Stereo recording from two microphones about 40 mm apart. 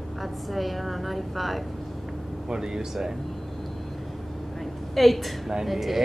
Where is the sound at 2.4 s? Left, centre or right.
Centre.